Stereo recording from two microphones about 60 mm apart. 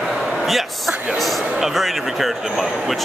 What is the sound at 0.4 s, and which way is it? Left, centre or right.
Speech, centre.